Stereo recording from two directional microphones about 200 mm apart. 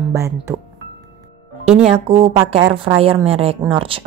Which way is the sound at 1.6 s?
35° right (ahead or behind).